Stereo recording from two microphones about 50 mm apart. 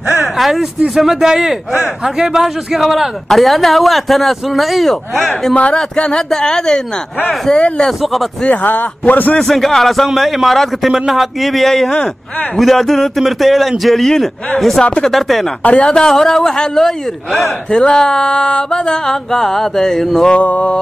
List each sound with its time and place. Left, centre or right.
0.2 s a man's voice: centre
5.5 s mantra: left
5.9 s a sound: centre
7.5 s mantra: centre
7.8 s a man's voice: centre
8.5 s a man's voice: left
9.4 s a man's voice: centre
14.8 s a sound: centre
15.0 s a man's voice: centre
15.6 s mantra: left
15.9 s a sound: centre
20.2 s mantra: left